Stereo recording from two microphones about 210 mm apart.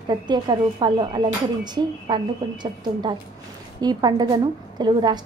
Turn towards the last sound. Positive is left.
turn(degrees=-20)  # may be behind; listen again after turning